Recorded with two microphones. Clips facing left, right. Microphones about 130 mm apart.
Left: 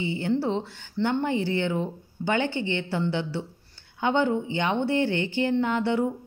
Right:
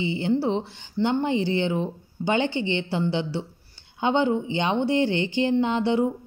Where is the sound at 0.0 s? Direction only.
20° right (ahead or behind).